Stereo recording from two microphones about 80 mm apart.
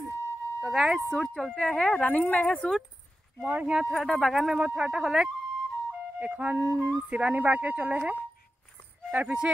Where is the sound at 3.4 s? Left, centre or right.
Centre.